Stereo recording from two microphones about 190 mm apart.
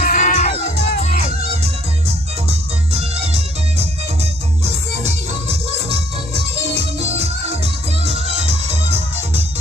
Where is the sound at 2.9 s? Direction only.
35° right (ahead or behind).